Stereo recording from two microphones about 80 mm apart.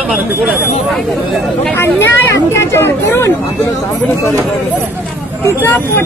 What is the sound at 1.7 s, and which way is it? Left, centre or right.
Speech, left.